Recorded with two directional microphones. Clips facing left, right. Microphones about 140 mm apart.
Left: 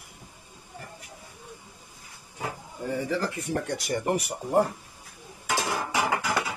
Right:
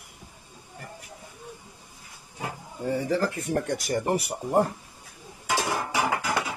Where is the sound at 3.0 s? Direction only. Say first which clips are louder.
Right 3 dB; 40° right (ahead or behind).